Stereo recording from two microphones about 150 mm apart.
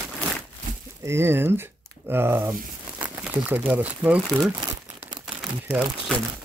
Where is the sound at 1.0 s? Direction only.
15° right (ahead or behind).